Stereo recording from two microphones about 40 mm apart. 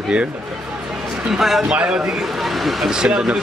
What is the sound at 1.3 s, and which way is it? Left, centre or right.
Speech, centre.